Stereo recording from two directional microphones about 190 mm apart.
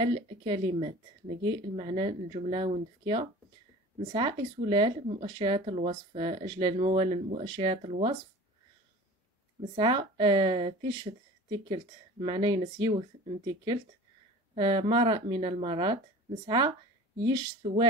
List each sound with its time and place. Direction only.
0.0 s speech: 30° right (ahead or behind)
9.8 s speech: 25° right (ahead or behind)